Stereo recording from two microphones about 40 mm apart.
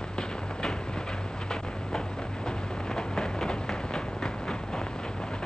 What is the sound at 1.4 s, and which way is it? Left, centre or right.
Train, centre.